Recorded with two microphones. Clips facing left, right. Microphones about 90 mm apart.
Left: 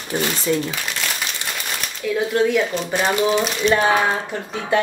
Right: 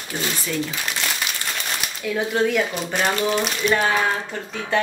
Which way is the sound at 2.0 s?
Centre (ahead or behind).